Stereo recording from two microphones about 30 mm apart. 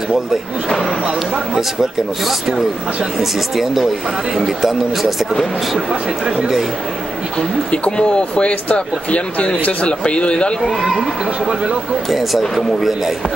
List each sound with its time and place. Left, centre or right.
1.0 s speech: right
3.2 s speech: centre
7.7 s speech: left
10.6 s speech: centre
11.4 s speech: right
12.1 s speech: centre